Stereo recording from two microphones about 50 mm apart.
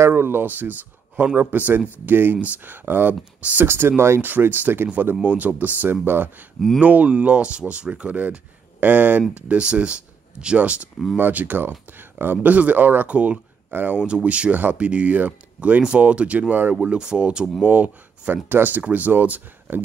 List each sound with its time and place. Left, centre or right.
0.1 s speech: right
3.6 s speech: right
4.2 s speech: right
5.2 s speech: right
6.8 s speech: right
9.3 s speech: right
11.1 s speech: right
16.8 s speech: centre
17.6 s speech: right